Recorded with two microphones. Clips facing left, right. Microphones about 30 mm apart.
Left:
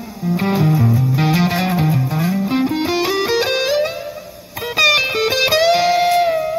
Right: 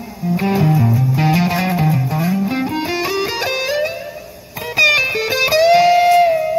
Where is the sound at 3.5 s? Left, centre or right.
Left.